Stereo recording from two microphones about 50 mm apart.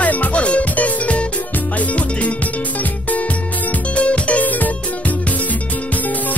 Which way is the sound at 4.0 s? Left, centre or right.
Left.